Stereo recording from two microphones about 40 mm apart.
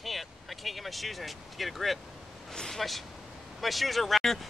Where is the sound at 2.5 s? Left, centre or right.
Centre.